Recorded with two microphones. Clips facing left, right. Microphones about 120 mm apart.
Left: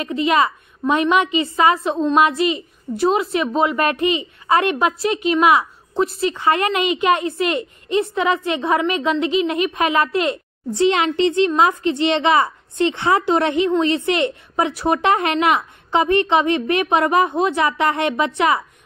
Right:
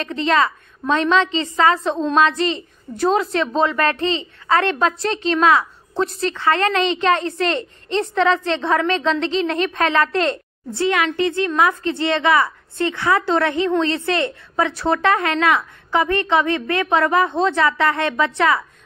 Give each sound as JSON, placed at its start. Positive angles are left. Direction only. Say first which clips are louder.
{"t": 0.0, "sound": "a woman's voice", "louder": "left 1 dB", "side_deg": 10}